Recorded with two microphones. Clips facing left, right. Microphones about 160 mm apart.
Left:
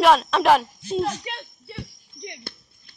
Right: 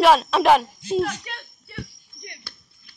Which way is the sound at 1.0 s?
25° left (ahead or behind).